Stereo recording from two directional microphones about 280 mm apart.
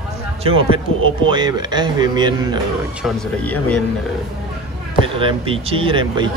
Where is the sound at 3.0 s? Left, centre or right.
Centre.